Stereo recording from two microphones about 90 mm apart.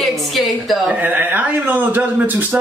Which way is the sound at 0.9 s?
20° right (ahead or behind).